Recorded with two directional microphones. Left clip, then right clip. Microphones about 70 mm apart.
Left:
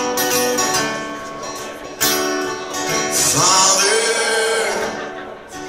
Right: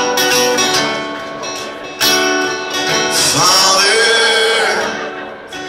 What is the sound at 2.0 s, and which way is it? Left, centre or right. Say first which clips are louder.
Music: right 6 dB; left.